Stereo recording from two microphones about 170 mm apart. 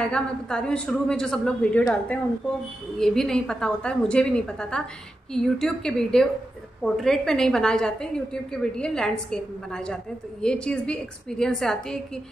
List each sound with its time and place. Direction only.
0.0 s a woman's voice: 5° left (ahead or behind)